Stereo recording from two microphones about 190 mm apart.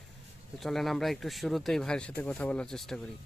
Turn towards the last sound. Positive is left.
turn(degrees=0)  # may be behind; listen again after turning